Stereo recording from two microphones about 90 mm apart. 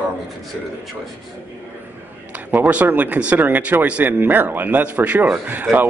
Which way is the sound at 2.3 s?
15° right (ahead or behind).